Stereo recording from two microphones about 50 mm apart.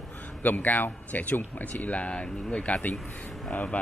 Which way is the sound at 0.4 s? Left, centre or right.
Left.